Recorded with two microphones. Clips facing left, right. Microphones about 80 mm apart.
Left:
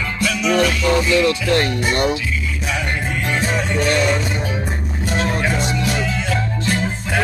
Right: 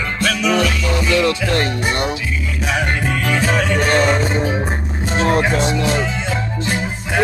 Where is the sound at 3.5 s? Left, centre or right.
Right.